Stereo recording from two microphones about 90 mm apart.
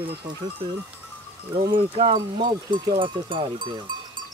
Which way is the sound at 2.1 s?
55° right (ahead or behind).